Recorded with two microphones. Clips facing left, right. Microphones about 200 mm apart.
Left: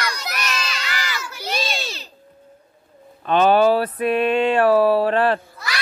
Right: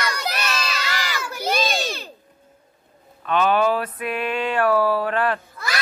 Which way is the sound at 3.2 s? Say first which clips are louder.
Left 4 dB; 30° left (ahead or behind).